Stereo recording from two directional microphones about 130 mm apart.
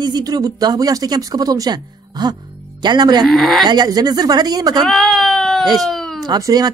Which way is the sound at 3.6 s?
35° right (ahead or behind).